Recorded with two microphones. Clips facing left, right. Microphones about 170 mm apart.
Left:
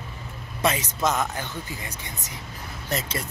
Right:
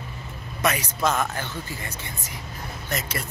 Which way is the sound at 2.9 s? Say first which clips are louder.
Left 2 dB; 35° left (ahead or behind).